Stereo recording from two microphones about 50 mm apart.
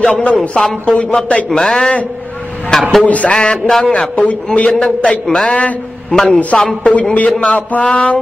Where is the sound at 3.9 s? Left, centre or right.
Left.